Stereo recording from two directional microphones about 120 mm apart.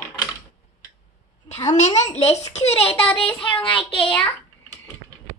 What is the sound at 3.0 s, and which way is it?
Speech, 50° left (ahead or behind).